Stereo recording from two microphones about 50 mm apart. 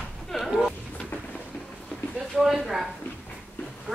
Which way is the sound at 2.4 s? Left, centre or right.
Centre.